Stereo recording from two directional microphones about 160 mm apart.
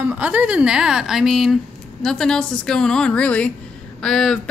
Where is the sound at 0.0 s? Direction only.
10° right (ahead or behind).